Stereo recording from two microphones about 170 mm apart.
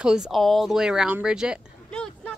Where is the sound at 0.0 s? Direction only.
5° right (ahead or behind).